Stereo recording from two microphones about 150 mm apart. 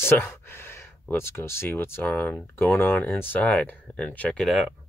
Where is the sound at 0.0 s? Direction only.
15° left (ahead or behind).